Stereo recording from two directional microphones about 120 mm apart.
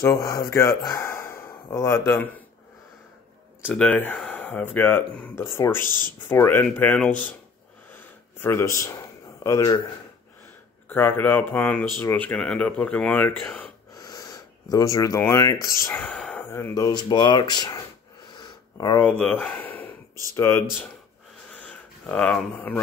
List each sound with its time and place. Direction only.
0.6 s speech: 25° left (ahead or behind)
3.6 s speech: 15° left (ahead or behind)
7.9 s a sound: 20° left (ahead or behind)
9.4 s speech: 25° left (ahead or behind)
10.9 s speech: 15° left (ahead or behind)
13.9 s speech: 35° left (ahead or behind)
16.0 s speech: 5° left (ahead or behind)
16.3 s speech: 20° left (ahead or behind)
16.9 s speech: 35° left (ahead or behind)
18.3 s a sound: 35° left (ahead or behind)
18.9 s speech: 10° left (ahead or behind)
21.5 s a sound: 10° left (ahead or behind)